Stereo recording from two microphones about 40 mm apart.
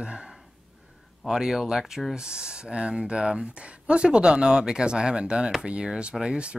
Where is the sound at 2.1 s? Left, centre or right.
Right.